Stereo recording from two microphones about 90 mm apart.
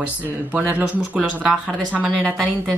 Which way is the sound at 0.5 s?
15° right (ahead or behind).